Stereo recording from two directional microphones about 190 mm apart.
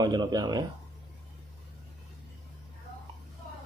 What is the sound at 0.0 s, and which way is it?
Speech, 20° right (ahead or behind).